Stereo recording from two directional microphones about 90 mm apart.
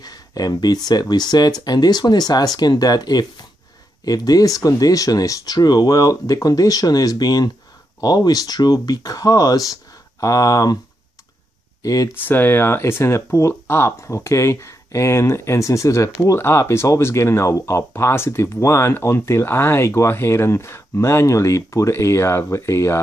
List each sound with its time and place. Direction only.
0.0 s a sound: 45° left (ahead or behind)
0.8 s speech: 50° left (ahead or behind)
11.8 s speech: 40° left (ahead or behind)
12.1 s speech: 20° left (ahead or behind)